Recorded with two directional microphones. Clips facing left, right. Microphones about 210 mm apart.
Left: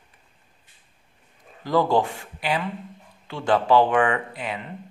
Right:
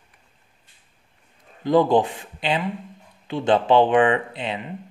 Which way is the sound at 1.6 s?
20° right (ahead or behind).